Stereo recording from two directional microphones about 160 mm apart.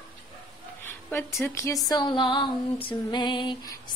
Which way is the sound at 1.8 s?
25° left (ahead or behind).